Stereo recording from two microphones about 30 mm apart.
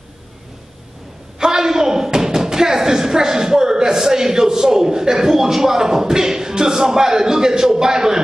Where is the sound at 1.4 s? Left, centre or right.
Centre.